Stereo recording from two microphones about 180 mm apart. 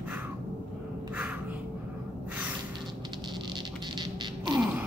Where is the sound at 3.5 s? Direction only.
25° right (ahead or behind).